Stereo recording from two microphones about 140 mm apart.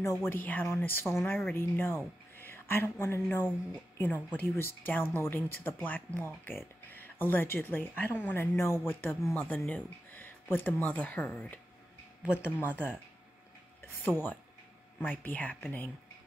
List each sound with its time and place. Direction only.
0.2 s speech: 15° left (ahead or behind)
12.3 s speech: 10° right (ahead or behind)
14.0 s speech: 15° left (ahead or behind)